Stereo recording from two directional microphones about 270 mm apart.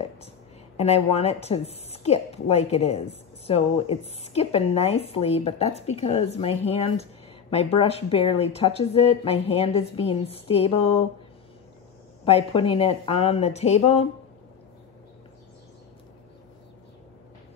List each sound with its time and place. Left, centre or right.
0.7 s a woman's voice: left
12.3 s a woman's voice: left